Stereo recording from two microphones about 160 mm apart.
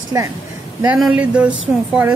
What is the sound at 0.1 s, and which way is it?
Speech, 15° right (ahead or behind).